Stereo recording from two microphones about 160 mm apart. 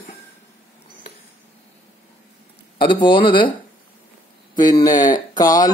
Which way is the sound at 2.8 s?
30° left (ahead or behind).